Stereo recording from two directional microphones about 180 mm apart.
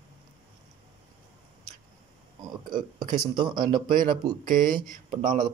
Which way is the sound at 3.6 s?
50° right (ahead or behind).